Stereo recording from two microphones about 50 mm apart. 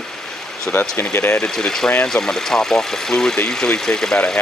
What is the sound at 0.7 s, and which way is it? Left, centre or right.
Speech, left.